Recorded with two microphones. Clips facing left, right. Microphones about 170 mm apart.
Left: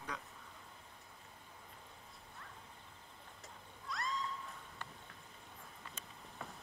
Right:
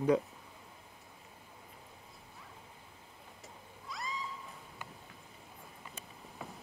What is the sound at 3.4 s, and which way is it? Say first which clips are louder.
Cat: right 3 dB; centre (ahead or behind).